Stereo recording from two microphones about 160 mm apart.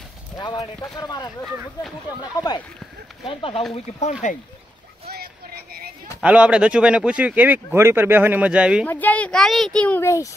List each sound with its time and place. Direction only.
0.4 s speech: 25° left (ahead or behind)
6.2 s speech: 5° right (ahead or behind)
8.8 s speech: 10° left (ahead or behind)